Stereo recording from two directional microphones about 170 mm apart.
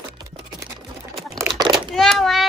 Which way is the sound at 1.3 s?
25° right (ahead or behind).